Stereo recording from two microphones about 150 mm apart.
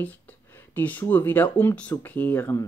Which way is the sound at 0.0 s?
10° left (ahead or behind).